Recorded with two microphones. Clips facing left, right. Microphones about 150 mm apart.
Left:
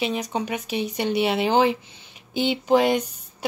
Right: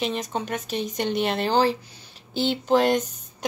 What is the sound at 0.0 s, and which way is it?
Speech, 10° left (ahead or behind).